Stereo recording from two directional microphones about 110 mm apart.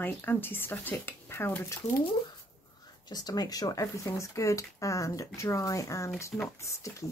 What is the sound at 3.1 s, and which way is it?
Speech, 35° left (ahead or behind).